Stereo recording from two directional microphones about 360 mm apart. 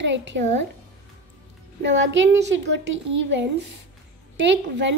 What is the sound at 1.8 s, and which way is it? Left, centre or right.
A woman's voice, right.